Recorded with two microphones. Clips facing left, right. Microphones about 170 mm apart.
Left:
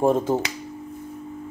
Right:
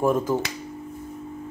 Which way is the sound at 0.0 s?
30° left (ahead or behind).